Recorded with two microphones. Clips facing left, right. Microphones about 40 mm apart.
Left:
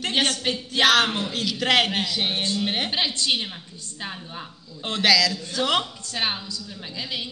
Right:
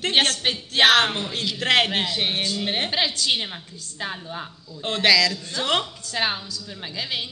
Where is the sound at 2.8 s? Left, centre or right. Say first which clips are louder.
Right 1 dB; right.